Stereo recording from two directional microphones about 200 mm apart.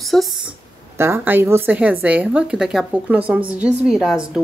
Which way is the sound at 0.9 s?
10° right (ahead or behind).